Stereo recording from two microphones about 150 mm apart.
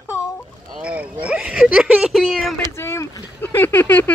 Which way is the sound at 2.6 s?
20° left (ahead or behind).